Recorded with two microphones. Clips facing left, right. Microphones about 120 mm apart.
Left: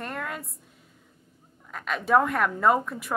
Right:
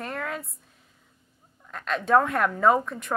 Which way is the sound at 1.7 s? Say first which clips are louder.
Right 1 dB; 5° left (ahead or behind).